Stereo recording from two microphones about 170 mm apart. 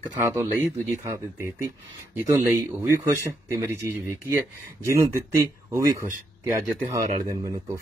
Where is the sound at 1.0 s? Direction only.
15° right (ahead or behind).